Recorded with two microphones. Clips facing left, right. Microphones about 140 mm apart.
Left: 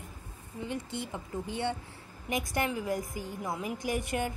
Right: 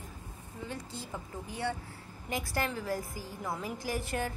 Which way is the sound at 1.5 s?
25° left (ahead or behind).